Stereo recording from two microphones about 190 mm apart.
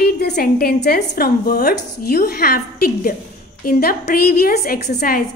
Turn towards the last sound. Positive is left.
turn(degrees=50)  # may be behind; listen again after turning